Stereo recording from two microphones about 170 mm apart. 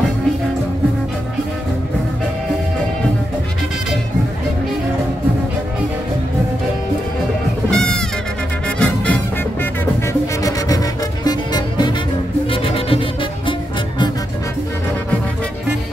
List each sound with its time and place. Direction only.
7.7 s music: 5° left (ahead or behind)
10.4 s music: 20° left (ahead or behind)